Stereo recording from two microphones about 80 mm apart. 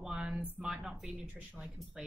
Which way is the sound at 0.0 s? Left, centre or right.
Centre.